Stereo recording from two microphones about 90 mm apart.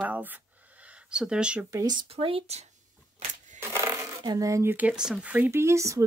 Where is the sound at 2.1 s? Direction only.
90° right.